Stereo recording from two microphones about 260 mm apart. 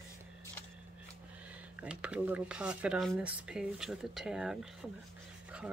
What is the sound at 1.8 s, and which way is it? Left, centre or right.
Speech, centre.